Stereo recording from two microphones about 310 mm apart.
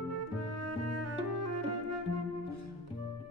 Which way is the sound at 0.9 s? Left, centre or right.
Right.